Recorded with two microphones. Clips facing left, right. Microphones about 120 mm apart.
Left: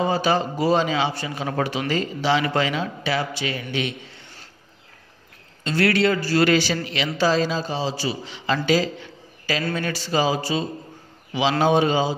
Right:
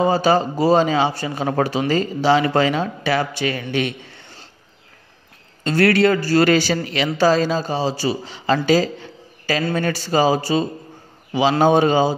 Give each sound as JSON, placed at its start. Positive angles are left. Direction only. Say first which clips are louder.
{"t": 0.0, "sound": "speech", "louder": "right 4 dB", "side_deg": -35}
{"t": 5.6, "sound": "a man's voice", "louder": "right 4 dB", "side_deg": -45}
{"t": 8.6, "sound": "a sound", "louder": "right 4 dB", "side_deg": -40}
{"t": 9.8, "sound": "a man's voice", "louder": "right 6 dB", "side_deg": -45}
{"t": 11.6, "sound": "a man's voice", "louder": "right 4 dB", "side_deg": -45}